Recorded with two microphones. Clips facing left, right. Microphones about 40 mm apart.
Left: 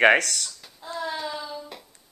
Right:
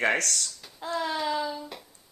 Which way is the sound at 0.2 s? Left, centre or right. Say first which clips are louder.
Even; right.